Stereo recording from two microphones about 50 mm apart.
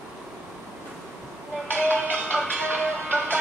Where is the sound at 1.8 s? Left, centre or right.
Left.